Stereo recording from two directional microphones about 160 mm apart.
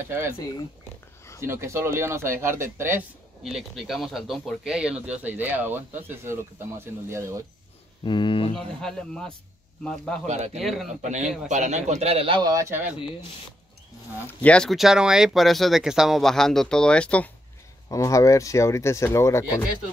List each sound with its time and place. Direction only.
1.4 s speech: 15° right (ahead or behind)
3.4 s speech: centre (ahead or behind); by 7.4 s 20° right (ahead or behind)
8.0 s speech: 30° left (ahead or behind)
8.5 s speech: 5° left (ahead or behind)
10.2 s a man's voice: 45° right (ahead or behind)
10.6 s speech: centre (ahead or behind)
10.9 s a man's voice: 45° right (ahead or behind); by 12.9 s 15° right (ahead or behind)
14.2 s speech: 10° left (ahead or behind)
17.8 s speech: 20° left (ahead or behind)